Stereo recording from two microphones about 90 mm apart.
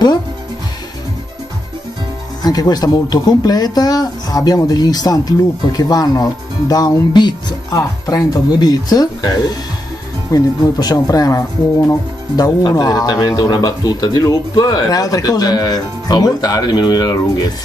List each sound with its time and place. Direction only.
2.4 s speech: 50° left (ahead or behind)
7.7 s speech: 40° left (ahead or behind)
10.3 s speech: 45° left (ahead or behind)